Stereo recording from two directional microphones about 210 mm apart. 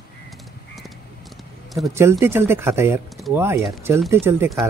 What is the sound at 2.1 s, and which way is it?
Speech, 10° right (ahead or behind).